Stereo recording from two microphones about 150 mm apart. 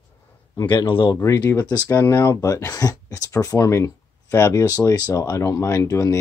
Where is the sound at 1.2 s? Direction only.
20° left (ahead or behind).